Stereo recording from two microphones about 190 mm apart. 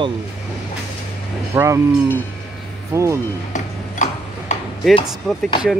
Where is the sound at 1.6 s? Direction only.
15° right (ahead or behind).